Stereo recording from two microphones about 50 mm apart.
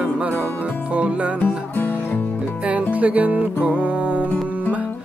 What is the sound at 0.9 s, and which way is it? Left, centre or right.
Music, right.